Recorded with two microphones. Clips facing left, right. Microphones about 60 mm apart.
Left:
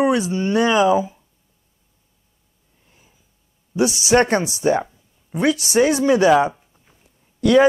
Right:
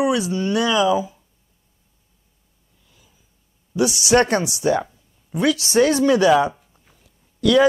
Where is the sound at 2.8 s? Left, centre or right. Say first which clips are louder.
Left 2 dB; left.